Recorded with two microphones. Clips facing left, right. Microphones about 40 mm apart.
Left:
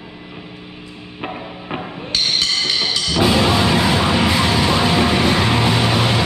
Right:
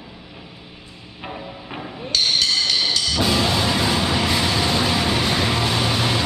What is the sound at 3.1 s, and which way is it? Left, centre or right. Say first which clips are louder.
Music: left 7 dB; left.